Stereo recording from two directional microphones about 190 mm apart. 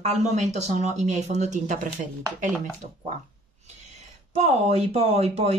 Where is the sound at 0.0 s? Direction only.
35° right (ahead or behind).